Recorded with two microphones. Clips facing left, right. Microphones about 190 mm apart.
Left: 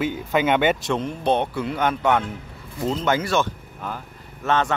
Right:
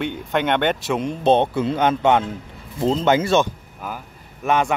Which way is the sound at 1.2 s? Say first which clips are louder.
Right 7 dB; 25° right (ahead or behind).